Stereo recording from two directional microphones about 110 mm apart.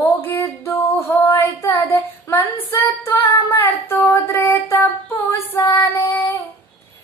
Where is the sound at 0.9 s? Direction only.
25° left (ahead or behind).